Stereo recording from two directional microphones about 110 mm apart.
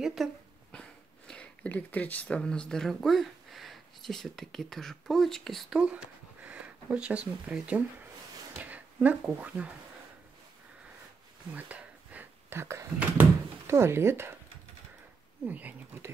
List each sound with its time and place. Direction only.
0.0 s speech: 5° right (ahead or behind)
0.7 s speech: 10° left (ahead or behind); by 9.8 s 15° right (ahead or behind)
11.5 s a sound: 15° right (ahead or behind)
15.4 s speech: 15° right (ahead or behind)